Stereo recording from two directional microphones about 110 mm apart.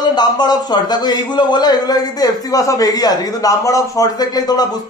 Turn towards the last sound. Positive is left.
turn(degrees=35)  # may be behind; listen again after turning